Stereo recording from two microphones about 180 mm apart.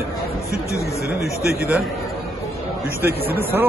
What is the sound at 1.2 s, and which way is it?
Speech, 10° right (ahead or behind).